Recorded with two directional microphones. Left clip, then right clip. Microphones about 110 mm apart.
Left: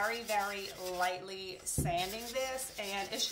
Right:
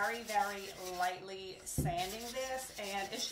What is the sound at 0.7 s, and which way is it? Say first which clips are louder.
Speech: left 3 dB; 25° left (ahead or behind).